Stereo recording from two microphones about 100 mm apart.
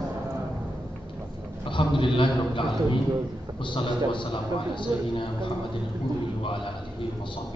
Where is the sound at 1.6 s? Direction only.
55° left (ahead or behind).